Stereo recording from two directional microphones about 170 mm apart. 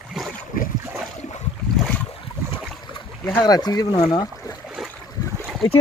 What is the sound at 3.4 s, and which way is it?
Speech, 25° left (ahead or behind).